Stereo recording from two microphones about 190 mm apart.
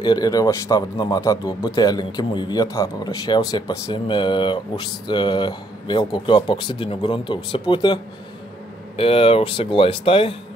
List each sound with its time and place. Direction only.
0.0 s speech: 20° left (ahead or behind)